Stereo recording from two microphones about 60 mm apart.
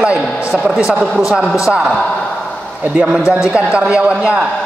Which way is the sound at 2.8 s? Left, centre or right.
Right.